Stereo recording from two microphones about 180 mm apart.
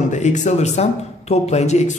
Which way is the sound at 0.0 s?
40° left (ahead or behind).